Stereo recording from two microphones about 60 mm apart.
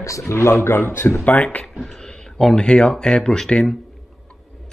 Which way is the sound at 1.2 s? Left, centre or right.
Left.